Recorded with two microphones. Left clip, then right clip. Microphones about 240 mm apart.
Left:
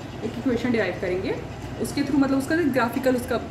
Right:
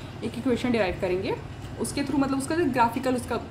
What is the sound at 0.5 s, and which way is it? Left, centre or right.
Speech, centre.